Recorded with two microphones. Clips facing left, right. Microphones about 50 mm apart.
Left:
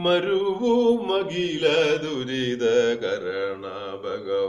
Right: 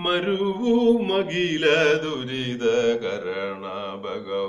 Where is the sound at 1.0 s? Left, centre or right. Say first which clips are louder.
Right 1 dB; right.